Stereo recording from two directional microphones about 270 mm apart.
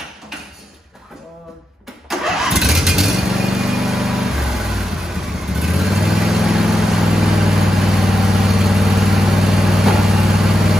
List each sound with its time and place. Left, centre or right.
2.0 s vehicle: centre